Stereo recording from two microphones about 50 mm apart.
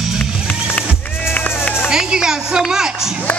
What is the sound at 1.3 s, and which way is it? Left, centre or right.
Run, left.